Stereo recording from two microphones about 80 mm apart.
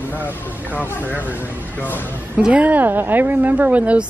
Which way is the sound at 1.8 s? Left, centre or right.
Left.